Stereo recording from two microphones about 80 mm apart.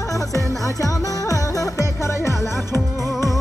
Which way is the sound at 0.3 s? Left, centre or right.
Left.